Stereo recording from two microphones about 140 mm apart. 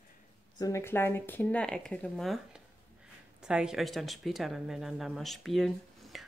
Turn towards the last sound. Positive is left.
turn(degrees=0)  # may be behind; listen again after turning